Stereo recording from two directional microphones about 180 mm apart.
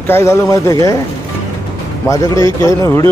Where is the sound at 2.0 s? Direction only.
15° left (ahead or behind).